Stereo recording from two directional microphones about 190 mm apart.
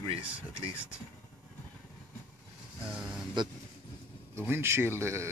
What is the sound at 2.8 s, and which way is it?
Speech, 5° right (ahead or behind).